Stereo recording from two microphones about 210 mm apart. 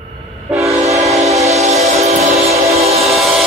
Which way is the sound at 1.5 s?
30° right (ahead or behind).